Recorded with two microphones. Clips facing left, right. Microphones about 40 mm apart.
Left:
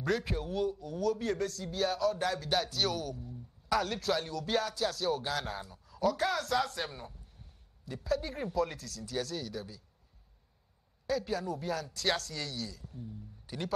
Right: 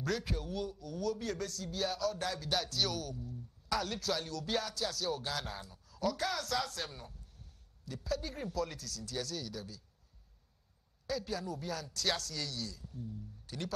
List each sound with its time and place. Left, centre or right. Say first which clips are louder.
0.0 s speech: left 4 dB; centre
4.4 s music: left 4 dB; centre
4.8 s speech: left 5 dB; centre
6.6 s a sound: left 5 dB; centre
8.1 s speech: left 5 dB; centre
11.3 s speech: left 5 dB; centre
12.7 s speech: left 1 dB; centre
13.0 s speech: right 2 dB; centre